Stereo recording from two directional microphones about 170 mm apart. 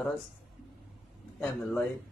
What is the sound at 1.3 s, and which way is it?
Speech, 5° left (ahead or behind).